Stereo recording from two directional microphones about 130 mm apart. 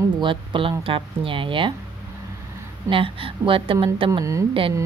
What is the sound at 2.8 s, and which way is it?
A woman's voice, 40° right (ahead or behind).